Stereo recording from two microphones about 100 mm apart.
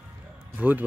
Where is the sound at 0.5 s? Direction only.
15° right (ahead or behind).